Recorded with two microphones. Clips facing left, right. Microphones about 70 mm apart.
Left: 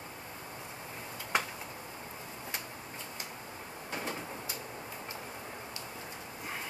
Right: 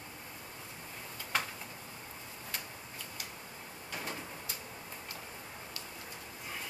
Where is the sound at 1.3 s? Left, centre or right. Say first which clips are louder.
Left 3 dB; centre.